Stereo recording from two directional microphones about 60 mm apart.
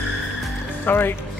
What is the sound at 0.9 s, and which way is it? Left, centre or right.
Speech, left.